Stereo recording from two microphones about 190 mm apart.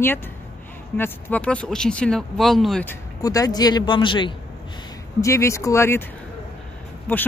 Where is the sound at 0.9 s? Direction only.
10° left (ahead or behind); by 4.3 s 25° left (ahead or behind).